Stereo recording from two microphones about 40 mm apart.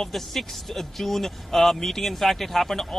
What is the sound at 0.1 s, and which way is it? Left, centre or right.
A man's voice, centre.